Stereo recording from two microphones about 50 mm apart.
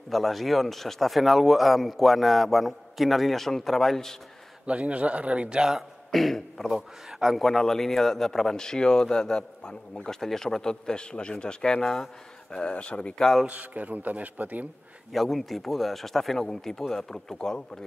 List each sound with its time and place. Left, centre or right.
0.1 s speech: centre
4.6 s a man's voice: right
6.1 s a man's voice: centre
6.7 s a man's voice: centre
12.5 s speech: left
13.5 s a man's voice: right
15.1 s speech: centre